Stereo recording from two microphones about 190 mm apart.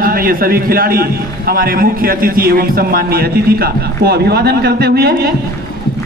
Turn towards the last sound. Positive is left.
turn(degrees=-55)  # may be behind; listen again after turning